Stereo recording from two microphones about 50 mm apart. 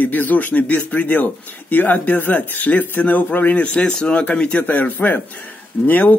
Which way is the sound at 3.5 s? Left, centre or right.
Left.